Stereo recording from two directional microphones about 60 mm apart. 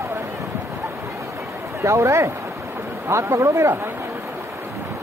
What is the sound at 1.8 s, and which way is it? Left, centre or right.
A man's voice, right.